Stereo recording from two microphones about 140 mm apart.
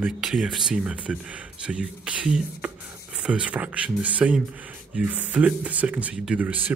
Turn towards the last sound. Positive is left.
turn(degrees=-10)  # may be behind; listen again after turning